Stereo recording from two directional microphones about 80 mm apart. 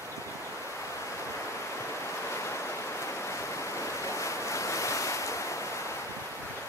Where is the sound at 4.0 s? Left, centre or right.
Left.